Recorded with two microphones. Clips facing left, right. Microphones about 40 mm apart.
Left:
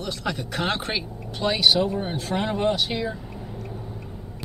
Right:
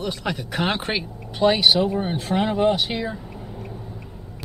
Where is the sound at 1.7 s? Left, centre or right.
Centre.